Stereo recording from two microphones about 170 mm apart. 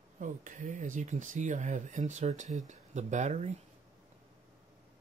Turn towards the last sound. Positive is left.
turn(degrees=-45)  # may be behind; listen again after turning